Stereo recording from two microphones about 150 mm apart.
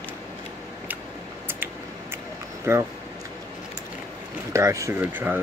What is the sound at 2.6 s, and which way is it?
Speech, 15° right (ahead or behind).